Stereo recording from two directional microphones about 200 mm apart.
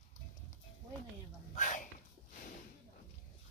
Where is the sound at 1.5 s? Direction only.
40° left (ahead or behind).